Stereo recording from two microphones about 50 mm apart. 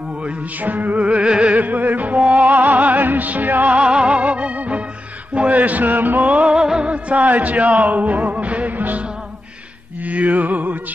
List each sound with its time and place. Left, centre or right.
0.2 s music: right
1.0 s music: right
1.6 s music: right
3.7 s music: right
5.3 s speech: right
6.5 s music: centre; by 9.0 s right
10.0 s music: right